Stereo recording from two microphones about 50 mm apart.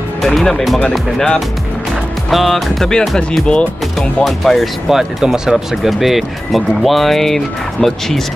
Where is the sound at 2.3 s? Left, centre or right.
Centre.